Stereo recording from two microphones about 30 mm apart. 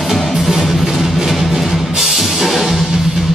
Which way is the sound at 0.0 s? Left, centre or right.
Centre.